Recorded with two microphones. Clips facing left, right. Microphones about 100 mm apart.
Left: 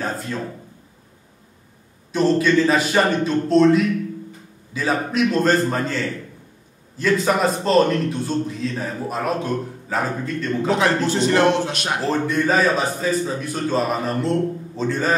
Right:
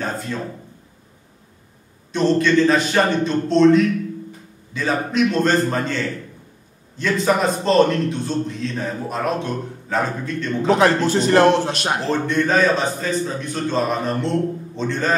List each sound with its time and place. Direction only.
2.1 s a man's voice: 5° left (ahead or behind)
10.8 s speech: 45° right (ahead or behind)
12.0 s a man's voice: 5° left (ahead or behind)